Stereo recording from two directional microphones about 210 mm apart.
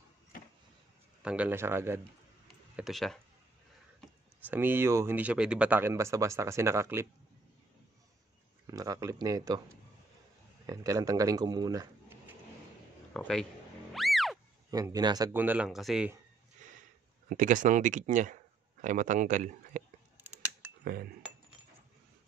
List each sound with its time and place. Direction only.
1.2 s speech: 5° right (ahead or behind)
2.7 s speech: centre (ahead or behind)
4.4 s speech: 10° right (ahead or behind)
8.6 s speech: 15° right (ahead or behind)
10.7 s speech: 15° right (ahead or behind)
13.1 s a man's voice: 5° left (ahead or behind)
13.9 s music: centre (ahead or behind)
14.7 s speech: 15° right (ahead or behind)
16.6 s a sound: 35° right (ahead or behind)
17.3 s speech: 40° right (ahead or behind)
20.8 s speech: 45° right (ahead or behind)